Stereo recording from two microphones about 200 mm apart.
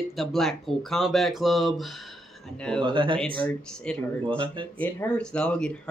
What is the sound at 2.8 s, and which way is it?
Speech, 25° right (ahead or behind).